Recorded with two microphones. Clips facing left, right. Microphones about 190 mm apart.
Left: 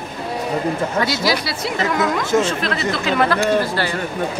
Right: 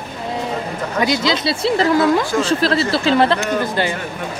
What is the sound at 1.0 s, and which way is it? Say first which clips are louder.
A woman's voice: right 6 dB; 20° right (ahead or behind).